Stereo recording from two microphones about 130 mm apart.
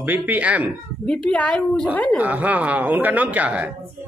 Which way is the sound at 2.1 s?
10° right (ahead or behind).